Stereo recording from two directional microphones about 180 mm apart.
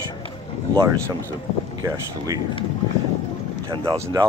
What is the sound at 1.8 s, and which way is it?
Speech, 10° right (ahead or behind).